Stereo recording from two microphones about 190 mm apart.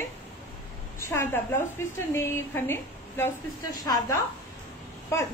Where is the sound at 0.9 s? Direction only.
15° left (ahead or behind).